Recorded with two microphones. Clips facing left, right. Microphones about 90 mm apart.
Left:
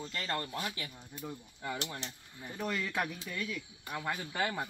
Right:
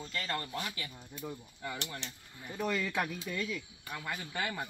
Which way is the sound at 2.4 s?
5° left (ahead or behind).